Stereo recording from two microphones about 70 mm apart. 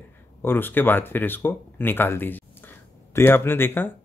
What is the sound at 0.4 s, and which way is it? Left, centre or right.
Speech, left.